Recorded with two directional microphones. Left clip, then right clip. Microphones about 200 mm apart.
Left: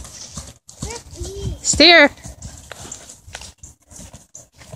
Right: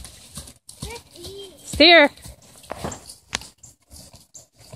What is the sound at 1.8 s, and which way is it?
Speech, 20° left (ahead or behind).